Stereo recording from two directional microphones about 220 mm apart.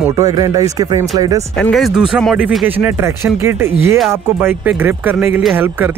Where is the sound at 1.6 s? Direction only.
5° left (ahead or behind).